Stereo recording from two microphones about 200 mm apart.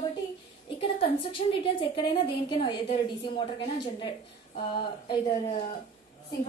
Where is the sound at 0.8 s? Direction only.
25° left (ahead or behind).